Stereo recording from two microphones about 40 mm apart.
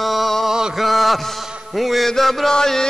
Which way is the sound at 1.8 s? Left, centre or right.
Centre.